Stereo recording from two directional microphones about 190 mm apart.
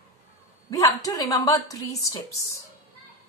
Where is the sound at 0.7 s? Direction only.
15° left (ahead or behind).